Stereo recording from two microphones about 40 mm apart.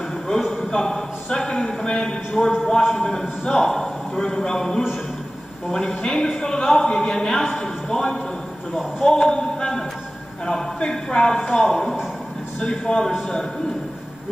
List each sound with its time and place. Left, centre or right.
0.7 s speech: centre
5.9 s speech: centre
12.5 s speech: centre